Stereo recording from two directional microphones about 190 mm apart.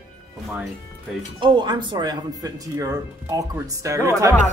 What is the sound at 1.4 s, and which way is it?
Speech, 25° right (ahead or behind).